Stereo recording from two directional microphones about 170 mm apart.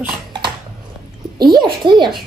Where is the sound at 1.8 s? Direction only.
25° right (ahead or behind).